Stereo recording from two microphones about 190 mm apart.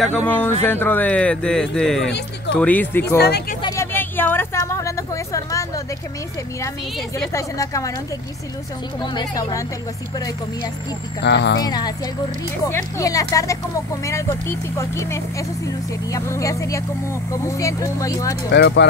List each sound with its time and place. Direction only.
0.0 s speech: 5° left (ahead or behind)
2.0 s speech: 65° left (ahead or behind)
2.5 s speech: 10° left (ahead or behind)
3.2 s speech: 60° left (ahead or behind)
3.6 s a sound: 15° left (ahead or behind)
7.3 s speech: 15° left (ahead or behind)
9.0 s speech: 20° left (ahead or behind)
11.2 s speech: 65° left (ahead or behind)
11.6 s speech: 20° left (ahead or behind)
18.5 s speech: 65° left (ahead or behind)